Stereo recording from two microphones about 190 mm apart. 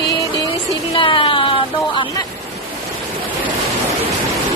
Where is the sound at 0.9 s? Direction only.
25° left (ahead or behind).